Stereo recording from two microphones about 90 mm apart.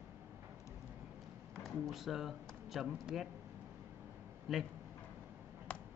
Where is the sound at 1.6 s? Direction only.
Centre (ahead or behind).